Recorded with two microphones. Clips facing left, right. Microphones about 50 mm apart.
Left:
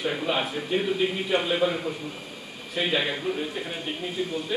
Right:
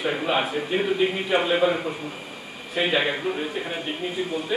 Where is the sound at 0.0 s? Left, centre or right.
Centre.